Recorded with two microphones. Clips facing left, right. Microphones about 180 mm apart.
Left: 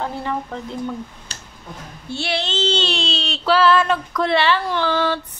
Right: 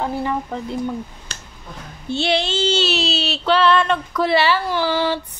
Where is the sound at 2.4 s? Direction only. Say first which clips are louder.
Right 2 dB; 10° right (ahead or behind).